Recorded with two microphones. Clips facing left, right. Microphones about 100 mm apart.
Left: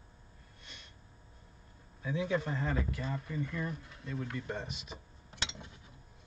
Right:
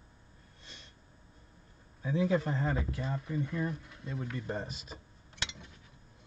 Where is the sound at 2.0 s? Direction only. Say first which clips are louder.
Right 4 dB; 35° right (ahead or behind).